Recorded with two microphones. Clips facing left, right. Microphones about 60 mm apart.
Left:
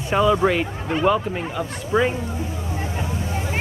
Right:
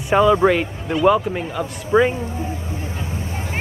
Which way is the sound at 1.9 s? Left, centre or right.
Right.